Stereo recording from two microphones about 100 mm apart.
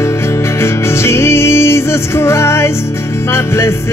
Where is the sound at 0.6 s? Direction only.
25° left (ahead or behind).